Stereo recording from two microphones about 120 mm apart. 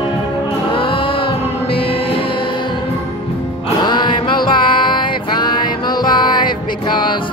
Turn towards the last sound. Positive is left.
turn(degrees=40)  # may be behind; listen again after turning